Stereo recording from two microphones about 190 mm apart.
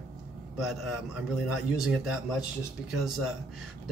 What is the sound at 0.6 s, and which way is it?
Speech, centre (ahead or behind).